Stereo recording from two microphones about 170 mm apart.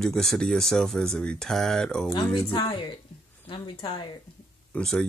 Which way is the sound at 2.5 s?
30° left (ahead or behind).